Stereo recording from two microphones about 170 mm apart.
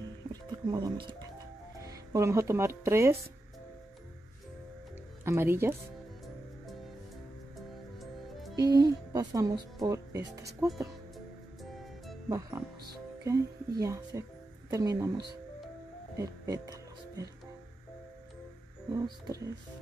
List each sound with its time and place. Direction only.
0.3 s music: 25° right (ahead or behind)
1.9 s speech: 15° right (ahead or behind)
5.2 s speech: 15° right (ahead or behind)
8.0 s music: centre (ahead or behind)
8.5 s speech: 20° right (ahead or behind)
12.3 s speech: 20° right (ahead or behind)
16.2 s music: 20° right (ahead or behind)
18.9 s speech: 20° right (ahead or behind)